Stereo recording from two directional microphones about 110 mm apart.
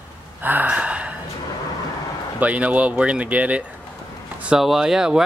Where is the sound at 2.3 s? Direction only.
10° right (ahead or behind).